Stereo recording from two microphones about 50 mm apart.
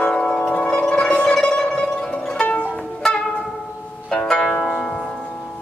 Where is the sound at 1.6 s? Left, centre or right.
Left.